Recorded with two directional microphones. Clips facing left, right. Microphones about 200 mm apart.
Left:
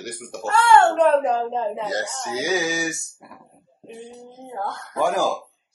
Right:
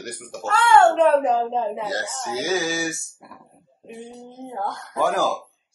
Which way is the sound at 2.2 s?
10° left (ahead or behind).